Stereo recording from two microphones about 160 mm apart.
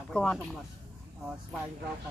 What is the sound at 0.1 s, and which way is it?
Speech, 5° left (ahead or behind).